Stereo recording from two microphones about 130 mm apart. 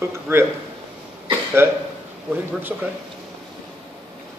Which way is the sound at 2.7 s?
15° right (ahead or behind).